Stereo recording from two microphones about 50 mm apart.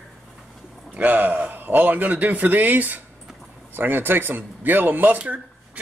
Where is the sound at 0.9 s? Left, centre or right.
Right.